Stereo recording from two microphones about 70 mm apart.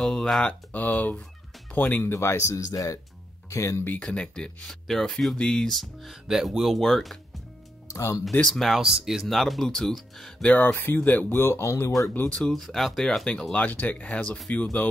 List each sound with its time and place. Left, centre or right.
0.0 s speech: centre
0.7 s speech: left
3.4 s speech: left
4.0 s speech: centre
7.9 s speech: left
8.5 s speech: centre
10.4 s speech: left
12.4 s speech: centre; by 14.9 s left